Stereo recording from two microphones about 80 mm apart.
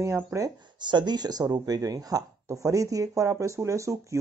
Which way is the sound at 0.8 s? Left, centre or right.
Right.